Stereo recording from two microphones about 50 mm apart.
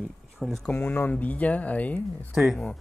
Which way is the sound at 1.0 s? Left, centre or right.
Left.